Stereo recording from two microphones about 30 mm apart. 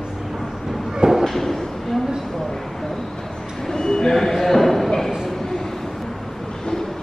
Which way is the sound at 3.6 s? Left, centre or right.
Centre.